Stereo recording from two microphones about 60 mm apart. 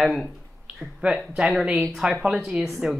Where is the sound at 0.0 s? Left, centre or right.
Centre.